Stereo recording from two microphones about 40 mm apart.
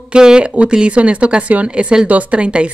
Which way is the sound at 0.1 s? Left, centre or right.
Right.